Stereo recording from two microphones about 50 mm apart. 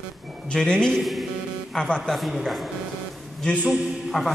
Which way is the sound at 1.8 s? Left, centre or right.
Centre.